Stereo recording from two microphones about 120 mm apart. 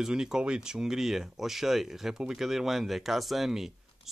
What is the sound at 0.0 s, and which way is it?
Speech, 5° right (ahead or behind).